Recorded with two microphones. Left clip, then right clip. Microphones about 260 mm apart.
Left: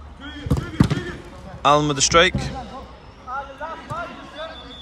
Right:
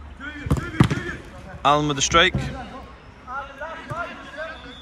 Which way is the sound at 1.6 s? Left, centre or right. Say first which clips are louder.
Left 2 dB; centre.